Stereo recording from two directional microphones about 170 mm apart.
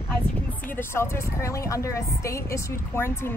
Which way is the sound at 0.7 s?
15° left (ahead or behind).